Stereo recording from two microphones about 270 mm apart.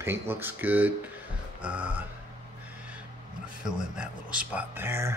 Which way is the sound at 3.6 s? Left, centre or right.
Centre.